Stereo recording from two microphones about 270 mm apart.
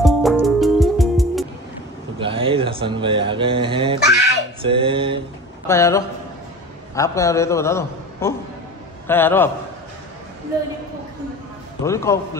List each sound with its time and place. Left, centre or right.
0.0 s music: centre
2.1 s speech: centre
4.6 s a sound: centre
5.7 s a man's voice: centre
11.8 s a man's voice: centre